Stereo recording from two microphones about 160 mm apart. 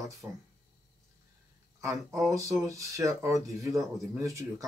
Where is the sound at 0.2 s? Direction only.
15° right (ahead or behind).